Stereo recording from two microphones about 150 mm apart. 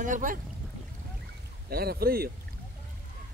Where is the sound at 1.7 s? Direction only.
90° right.